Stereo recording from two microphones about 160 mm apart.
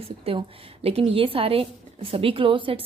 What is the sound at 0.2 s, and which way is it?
A woman's voice, 35° right (ahead or behind).